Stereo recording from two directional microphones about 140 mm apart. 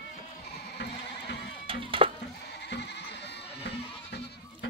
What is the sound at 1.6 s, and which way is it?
Music, 40° right (ahead or behind).